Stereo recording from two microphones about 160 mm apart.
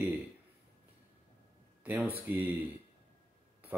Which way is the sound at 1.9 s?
10° right (ahead or behind).